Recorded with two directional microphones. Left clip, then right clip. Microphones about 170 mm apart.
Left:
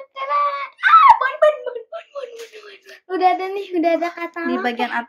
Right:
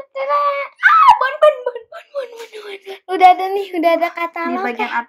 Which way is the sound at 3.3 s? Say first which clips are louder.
Right 6 dB; 40° right (ahead or behind).